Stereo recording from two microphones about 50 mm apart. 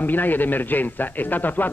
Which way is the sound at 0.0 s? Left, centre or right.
Left.